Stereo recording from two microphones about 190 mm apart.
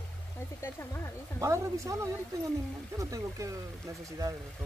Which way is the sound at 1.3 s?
15° right (ahead or behind).